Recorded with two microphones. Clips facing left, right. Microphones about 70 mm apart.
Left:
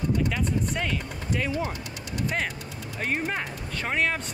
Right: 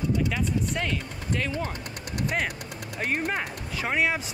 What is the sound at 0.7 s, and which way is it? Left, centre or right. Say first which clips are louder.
Speech: even; centre.